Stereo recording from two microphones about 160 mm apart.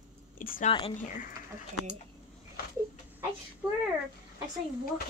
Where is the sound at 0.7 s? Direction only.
35° left (ahead or behind).